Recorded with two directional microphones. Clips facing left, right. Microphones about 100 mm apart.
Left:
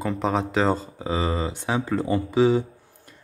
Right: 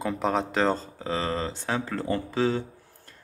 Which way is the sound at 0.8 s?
15° left (ahead or behind).